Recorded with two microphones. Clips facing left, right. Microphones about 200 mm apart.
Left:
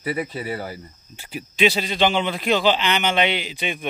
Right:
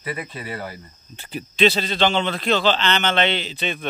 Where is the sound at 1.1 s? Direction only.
10° left (ahead or behind).